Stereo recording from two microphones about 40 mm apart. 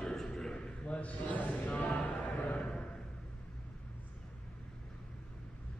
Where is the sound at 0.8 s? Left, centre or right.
Left.